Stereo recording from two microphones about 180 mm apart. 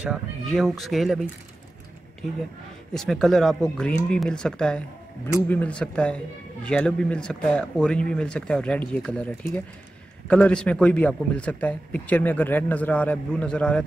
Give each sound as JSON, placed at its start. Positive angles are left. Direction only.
{"t": 0.0, "sound": "speech", "side_deg": 0}
{"t": 2.9, "sound": "a man's voice", "side_deg": 0}